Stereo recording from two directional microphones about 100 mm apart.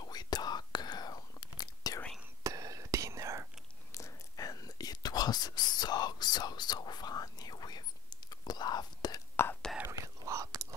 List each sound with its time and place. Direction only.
0.0 s whispering: 40° left (ahead or behind)
2.4 s whispering: 35° right (ahead or behind)
3.9 s whispering: 35° left (ahead or behind)
9.8 s whispering: 30° right (ahead or behind)